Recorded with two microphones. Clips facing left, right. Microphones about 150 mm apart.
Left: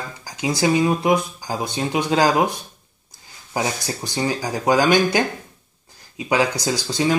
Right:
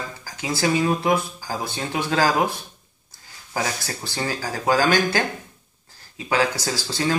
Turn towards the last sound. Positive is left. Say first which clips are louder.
# left 4 dB
turn(degrees=20)  # may be behind; listen again after turning